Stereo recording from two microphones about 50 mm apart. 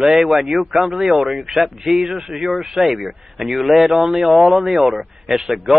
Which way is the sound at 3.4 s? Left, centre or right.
Centre.